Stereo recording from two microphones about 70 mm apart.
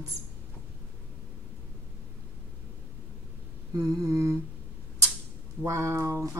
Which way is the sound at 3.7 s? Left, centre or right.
Right.